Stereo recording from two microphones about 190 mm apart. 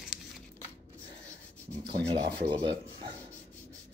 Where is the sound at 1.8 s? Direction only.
25° right (ahead or behind).